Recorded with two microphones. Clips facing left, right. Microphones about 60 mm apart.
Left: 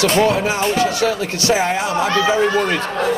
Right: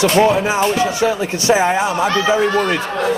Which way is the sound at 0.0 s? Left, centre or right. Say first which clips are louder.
Right 2 dB; centre.